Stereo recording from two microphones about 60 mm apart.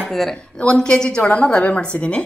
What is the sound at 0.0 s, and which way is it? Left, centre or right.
Speech, centre.